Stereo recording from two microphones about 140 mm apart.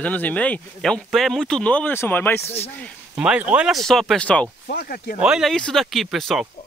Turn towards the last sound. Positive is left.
turn(degrees=0)  # may be behind; listen again after turning